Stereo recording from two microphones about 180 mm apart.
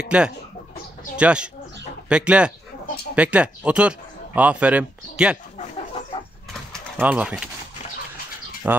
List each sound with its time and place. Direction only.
0.1 s speech: 5° right (ahead or behind)
7.0 s speech: 10° right (ahead or behind)
8.6 s speech: 10° right (ahead or behind)